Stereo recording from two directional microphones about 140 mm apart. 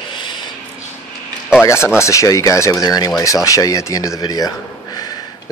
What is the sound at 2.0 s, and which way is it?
A man's voice, 20° left (ahead or behind).